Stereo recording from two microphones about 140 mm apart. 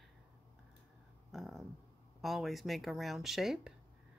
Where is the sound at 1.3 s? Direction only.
Centre (ahead or behind).